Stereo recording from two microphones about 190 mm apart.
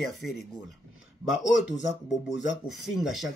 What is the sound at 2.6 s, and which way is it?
Speech, centre (ahead or behind).